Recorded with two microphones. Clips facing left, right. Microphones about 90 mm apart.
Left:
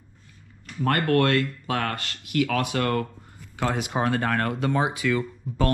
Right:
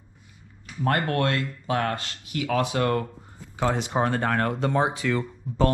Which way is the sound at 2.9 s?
15° right (ahead or behind).